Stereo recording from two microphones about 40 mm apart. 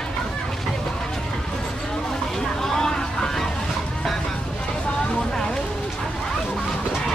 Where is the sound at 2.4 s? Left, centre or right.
Centre.